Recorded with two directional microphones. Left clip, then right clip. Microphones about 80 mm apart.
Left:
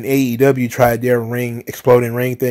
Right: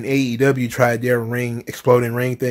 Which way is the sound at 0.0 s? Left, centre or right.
Left.